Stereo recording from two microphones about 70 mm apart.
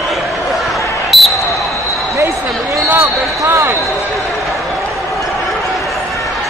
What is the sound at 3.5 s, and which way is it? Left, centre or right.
Basketball bounce, right.